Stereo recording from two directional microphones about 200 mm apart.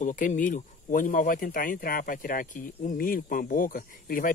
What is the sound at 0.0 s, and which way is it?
Speech, 40° left (ahead or behind).